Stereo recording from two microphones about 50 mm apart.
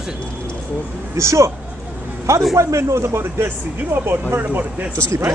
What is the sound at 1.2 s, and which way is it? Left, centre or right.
Speech, right.